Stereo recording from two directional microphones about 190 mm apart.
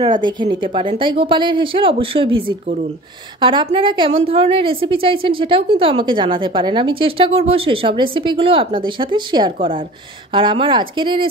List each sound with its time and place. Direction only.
0.0 s a woman's voice: 25° right (ahead or behind)